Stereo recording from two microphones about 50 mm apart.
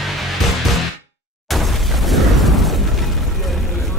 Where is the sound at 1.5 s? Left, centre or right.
Centre.